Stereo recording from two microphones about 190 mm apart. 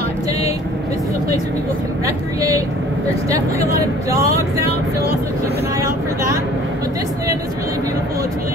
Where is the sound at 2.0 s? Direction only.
15° right (ahead or behind).